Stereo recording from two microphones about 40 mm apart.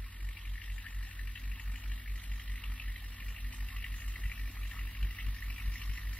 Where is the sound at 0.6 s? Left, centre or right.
Left.